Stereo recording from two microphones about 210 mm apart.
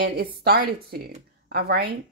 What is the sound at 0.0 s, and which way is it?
Speech, 50° right (ahead or behind).